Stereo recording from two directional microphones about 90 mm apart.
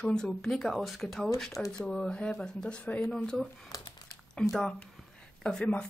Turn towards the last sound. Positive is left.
turn(degrees=15)  # may be behind; listen again after turning